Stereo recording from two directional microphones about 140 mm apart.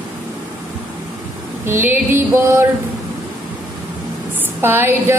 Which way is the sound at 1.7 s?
15° right (ahead or behind).